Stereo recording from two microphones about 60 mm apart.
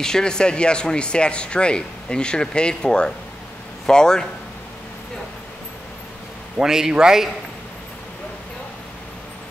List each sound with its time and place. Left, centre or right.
0.0 s speech: centre
6.6 s speech: centre